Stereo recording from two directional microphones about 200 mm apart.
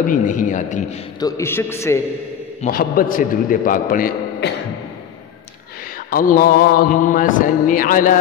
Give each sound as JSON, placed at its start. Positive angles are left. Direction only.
{"t": 0.0, "sound": "a man's voice", "side_deg": 40}
{"t": 1.2, "sound": "a man's voice", "side_deg": 15}
{"t": 2.6, "sound": "mantra", "side_deg": 45}
{"t": 6.0, "sound": "mantra", "side_deg": 45}